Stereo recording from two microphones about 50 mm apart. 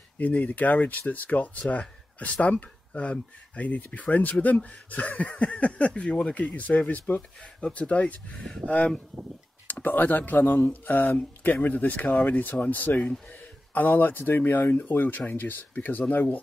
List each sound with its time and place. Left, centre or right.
0.2 s speech: left